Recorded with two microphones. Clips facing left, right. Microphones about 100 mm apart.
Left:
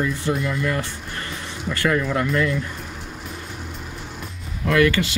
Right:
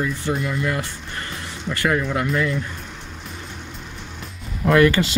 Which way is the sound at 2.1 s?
5° right (ahead or behind).